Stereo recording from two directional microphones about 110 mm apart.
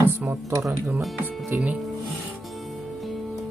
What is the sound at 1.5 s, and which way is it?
Speech, 20° right (ahead or behind).